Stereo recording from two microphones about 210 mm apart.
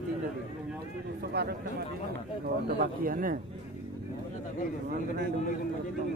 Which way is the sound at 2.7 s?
45° right (ahead or behind).